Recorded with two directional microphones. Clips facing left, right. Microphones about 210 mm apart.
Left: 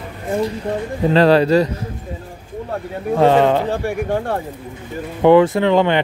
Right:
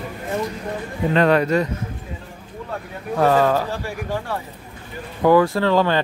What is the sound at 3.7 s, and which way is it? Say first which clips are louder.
Speech: left 7 dB; 55° left (ahead or behind).